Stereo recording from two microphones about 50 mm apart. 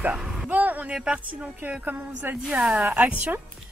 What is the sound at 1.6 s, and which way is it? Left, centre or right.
Speech, right.